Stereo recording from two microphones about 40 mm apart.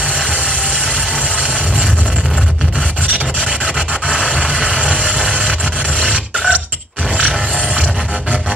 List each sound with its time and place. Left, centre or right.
0.3 s vehicle: right
3.4 s rub: right
6.1 s a sound: right